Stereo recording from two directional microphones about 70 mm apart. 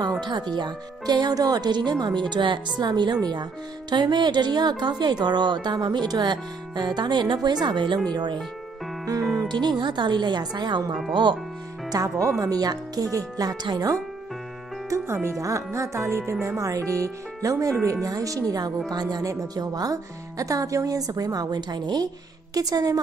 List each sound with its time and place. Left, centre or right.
0.2 s speech: right
9.0 s music: right
9.5 s speech: right
11.9 s speech: right
15.4 s speech: right
18.9 s speech: right
19.2 s speech: right
22.5 s speech: right